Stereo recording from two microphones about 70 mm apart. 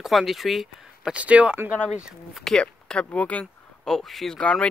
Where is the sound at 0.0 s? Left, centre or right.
Centre.